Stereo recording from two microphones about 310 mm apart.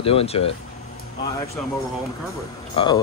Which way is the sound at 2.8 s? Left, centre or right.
Centre.